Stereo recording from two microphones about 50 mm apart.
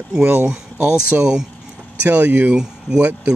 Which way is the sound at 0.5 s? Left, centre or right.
Right.